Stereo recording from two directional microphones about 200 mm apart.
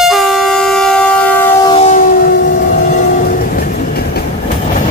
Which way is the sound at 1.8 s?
45° left (ahead or behind).